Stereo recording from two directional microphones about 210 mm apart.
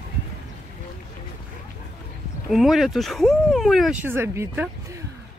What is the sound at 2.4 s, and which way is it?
Speech, centre (ahead or behind).